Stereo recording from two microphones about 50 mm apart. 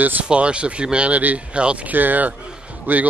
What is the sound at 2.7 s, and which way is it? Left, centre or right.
Speech, right.